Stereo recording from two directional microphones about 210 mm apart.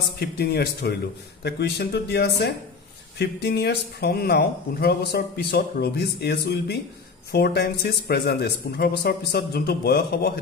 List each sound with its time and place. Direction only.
0.2 s speech: 50° left (ahead or behind)